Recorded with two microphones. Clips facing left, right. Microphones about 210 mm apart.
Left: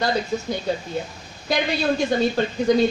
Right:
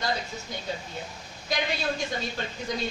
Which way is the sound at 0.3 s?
70° left (ahead or behind).